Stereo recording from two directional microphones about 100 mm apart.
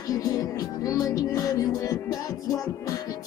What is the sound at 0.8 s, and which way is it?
Music, 35° left (ahead or behind).